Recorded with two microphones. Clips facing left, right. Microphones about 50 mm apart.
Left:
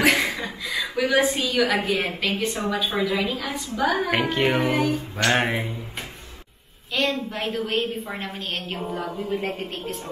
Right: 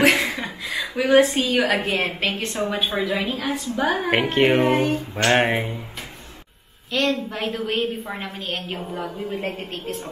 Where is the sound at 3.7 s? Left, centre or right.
Right.